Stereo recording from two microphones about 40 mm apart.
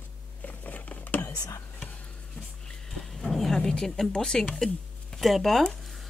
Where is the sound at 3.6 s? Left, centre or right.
Centre.